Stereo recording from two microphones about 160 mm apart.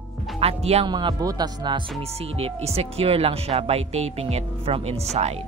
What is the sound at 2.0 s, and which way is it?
Speech, 40° right (ahead or behind).